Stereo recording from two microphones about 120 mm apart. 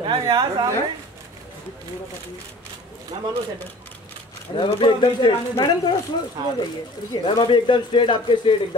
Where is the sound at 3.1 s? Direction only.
35° right (ahead or behind).